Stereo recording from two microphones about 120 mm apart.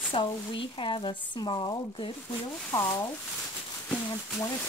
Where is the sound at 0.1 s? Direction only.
45° left (ahead or behind).